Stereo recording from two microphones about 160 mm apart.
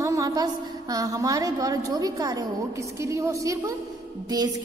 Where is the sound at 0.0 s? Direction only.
20° right (ahead or behind).